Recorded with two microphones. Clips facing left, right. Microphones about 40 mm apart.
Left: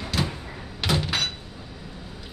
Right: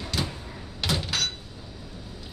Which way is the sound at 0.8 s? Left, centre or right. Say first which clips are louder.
Left 3 dB; centre.